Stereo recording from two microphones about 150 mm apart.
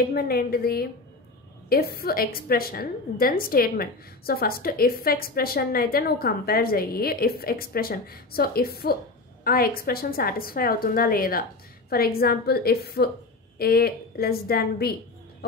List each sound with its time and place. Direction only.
0.1 s a woman's voice: 90° left
9.4 s a woman's voice: 80° left
11.9 s a woman's voice: 90° left